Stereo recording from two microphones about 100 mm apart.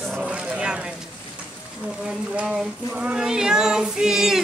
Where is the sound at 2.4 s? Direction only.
10° right (ahead or behind).